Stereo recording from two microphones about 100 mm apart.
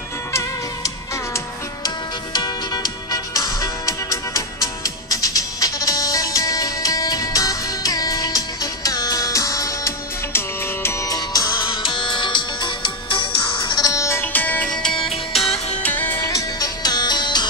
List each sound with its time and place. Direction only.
0.3 s music: 30° left (ahead or behind)
2.3 s music: 45° left (ahead or behind)
11.7 s music: 55° left (ahead or behind)
13.8 s music: 30° left (ahead or behind); by 15.5 s centre (ahead or behind)
15.8 s music: 20° left (ahead or behind)
16.3 s music: 35° left (ahead or behind)